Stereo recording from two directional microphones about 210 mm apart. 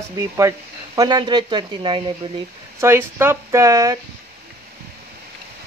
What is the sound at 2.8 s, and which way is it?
Speech, 10° right (ahead or behind).